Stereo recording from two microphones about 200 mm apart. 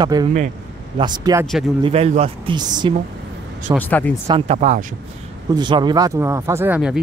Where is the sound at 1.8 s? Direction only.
30° right (ahead or behind).